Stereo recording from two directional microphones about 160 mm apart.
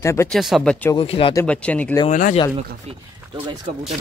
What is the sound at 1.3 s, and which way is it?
Speech, 10° left (ahead or behind).